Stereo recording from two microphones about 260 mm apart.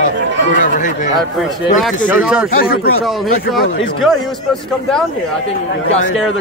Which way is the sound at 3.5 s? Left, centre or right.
Centre.